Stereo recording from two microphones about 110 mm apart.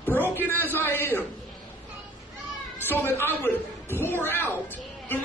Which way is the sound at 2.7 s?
20° left (ahead or behind).